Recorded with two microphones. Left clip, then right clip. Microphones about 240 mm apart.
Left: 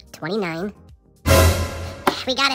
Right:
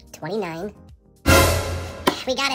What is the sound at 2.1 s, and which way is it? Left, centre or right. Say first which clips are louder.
Music: left 2 dB; centre.